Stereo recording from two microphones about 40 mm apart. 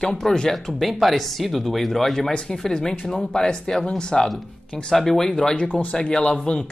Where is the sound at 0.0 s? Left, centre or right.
Centre.